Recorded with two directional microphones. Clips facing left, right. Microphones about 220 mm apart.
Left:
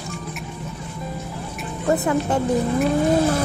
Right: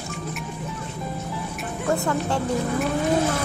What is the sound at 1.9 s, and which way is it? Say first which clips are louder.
Speech: left 4 dB; 20° left (ahead or behind).